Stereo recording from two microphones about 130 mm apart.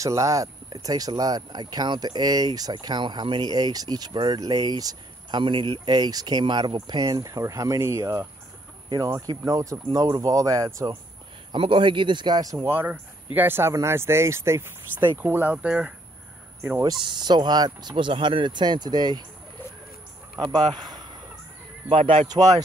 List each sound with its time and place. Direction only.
0.0 s speech: 25° right (ahead or behind)
11.5 s speech: 40° right (ahead or behind)
12.5 s speech: 15° right (ahead or behind)
16.8 s speech: 35° right (ahead or behind)
20.6 s speech: 35° right (ahead or behind)
22.3 s speech: 30° right (ahead or behind)